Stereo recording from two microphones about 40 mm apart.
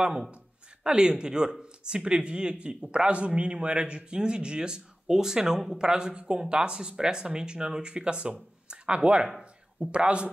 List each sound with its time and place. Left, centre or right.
0.8 s speech: right